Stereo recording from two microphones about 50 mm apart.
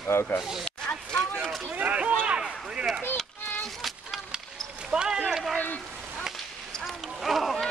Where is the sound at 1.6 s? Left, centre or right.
Right.